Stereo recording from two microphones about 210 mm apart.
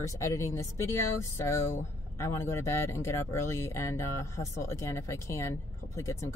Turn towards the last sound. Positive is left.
turn(degrees=15)  # may be behind; listen again after turning